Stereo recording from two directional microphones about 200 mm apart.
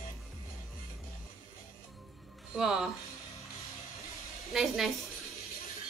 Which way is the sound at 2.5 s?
5° right (ahead or behind).